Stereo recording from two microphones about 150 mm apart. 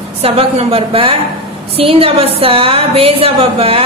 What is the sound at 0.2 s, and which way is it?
A woman's voice, 40° right (ahead or behind).